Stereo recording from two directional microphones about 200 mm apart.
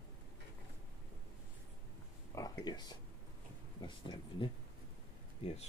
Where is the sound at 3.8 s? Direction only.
25° left (ahead or behind).